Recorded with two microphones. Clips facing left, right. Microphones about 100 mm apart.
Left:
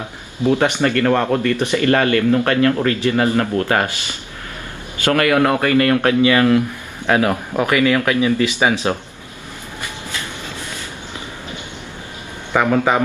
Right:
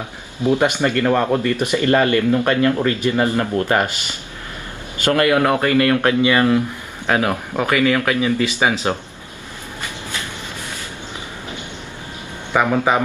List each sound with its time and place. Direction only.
0.5 s speech: 15° right (ahead or behind)
5.0 s speech: 25° right (ahead or behind)
12.5 s speech: 10° right (ahead or behind)